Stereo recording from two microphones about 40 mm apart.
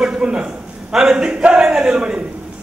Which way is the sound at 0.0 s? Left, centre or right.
Right.